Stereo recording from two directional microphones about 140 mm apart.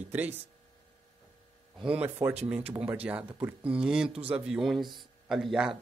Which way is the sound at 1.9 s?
15° right (ahead or behind).